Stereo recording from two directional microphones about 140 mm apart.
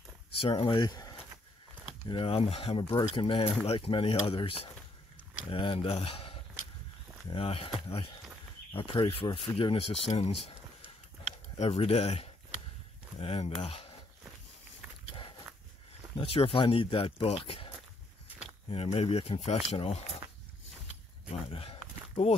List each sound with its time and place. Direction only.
0.4 s speech: 40° left (ahead or behind)
1.9 s speech: 40° left (ahead or behind)
11.5 s speech: 50° left (ahead or behind)
16.2 s speech: 40° left (ahead or behind)
18.7 s speech: 45° left (ahead or behind)
21.3 s a sound: 40° left (ahead or behind)